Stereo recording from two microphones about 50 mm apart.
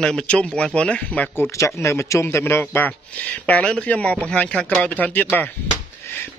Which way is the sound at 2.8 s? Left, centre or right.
Left.